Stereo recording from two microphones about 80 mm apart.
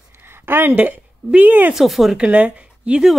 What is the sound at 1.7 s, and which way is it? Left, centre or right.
Speech, centre.